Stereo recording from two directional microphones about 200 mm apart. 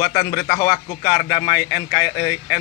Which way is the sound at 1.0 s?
40° left (ahead or behind).